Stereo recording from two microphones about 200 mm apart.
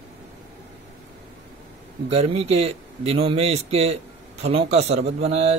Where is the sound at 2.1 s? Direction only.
30° right (ahead or behind).